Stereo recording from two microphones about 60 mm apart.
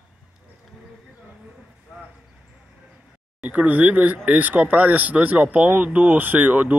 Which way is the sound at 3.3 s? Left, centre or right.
Right.